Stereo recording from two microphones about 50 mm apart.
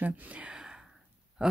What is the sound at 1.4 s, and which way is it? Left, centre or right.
Speech, centre.